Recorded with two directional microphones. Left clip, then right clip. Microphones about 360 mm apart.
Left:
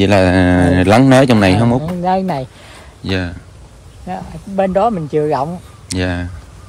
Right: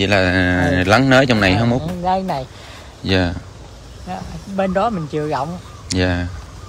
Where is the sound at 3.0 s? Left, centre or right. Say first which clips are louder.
Right 2 dB; centre.